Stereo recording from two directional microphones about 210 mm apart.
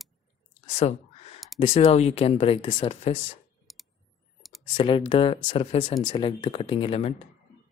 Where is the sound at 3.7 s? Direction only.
Centre (ahead or behind).